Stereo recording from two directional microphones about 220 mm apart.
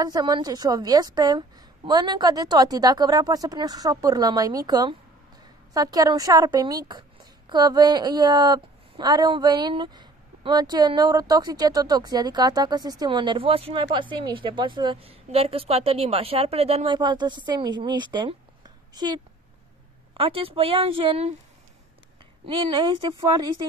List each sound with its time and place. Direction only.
0.0 s a woman's voice: 15° right (ahead or behind)
22.5 s speech: 20° right (ahead or behind)